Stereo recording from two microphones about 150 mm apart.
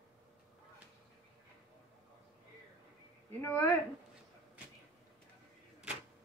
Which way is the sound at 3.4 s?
15° left (ahead or behind).